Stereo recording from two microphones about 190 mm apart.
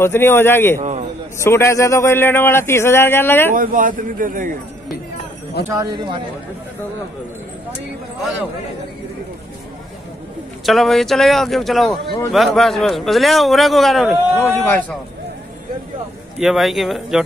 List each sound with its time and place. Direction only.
0.0 s a man's voice: 10° left (ahead or behind)
0.7 s a man's voice: 40° right (ahead or behind)
1.4 s a man's voice: 15° left (ahead or behind)
3.5 s speech: 45° right (ahead or behind)
5.7 s speech: 20° right (ahead or behind)
10.6 s a man's voice: centre (ahead or behind)
14.4 s a man's voice: 10° left (ahead or behind)
16.3 s a man's voice: centre (ahead or behind)